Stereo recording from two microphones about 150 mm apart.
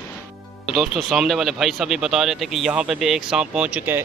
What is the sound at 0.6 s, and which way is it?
Speech, centre (ahead or behind).